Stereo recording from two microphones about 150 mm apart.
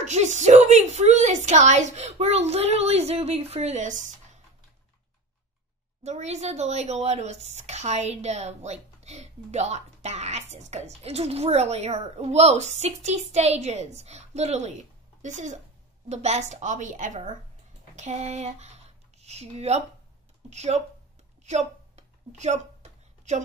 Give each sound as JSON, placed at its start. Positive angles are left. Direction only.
{"t": 0.0, "sound": "a woman's voice", "side_deg": -50}
{"t": 6.0, "sound": "a woman's voice", "side_deg": -50}
{"t": 21.5, "sound": "a sound", "side_deg": -50}